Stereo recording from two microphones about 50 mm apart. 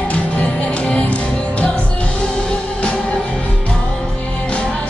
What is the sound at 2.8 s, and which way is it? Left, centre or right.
Music, left.